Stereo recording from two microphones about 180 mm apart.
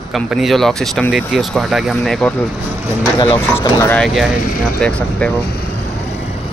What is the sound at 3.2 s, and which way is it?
Speech, 30° left (ahead or behind).